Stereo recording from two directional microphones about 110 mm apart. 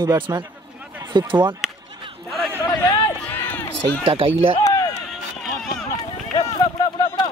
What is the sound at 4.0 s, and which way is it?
Speech, 55° right (ahead or behind).